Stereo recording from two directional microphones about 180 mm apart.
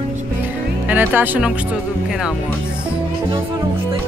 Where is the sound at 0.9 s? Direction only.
10° right (ahead or behind).